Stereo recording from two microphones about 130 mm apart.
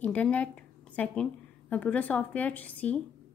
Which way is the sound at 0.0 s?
10° left (ahead or behind).